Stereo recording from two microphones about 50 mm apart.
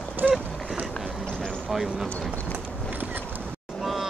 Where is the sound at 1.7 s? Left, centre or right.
Centre.